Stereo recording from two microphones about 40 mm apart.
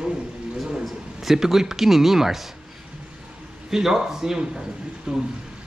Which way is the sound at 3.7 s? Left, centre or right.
Centre.